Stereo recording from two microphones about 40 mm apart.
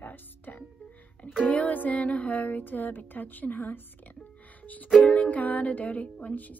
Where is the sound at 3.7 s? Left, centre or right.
Left.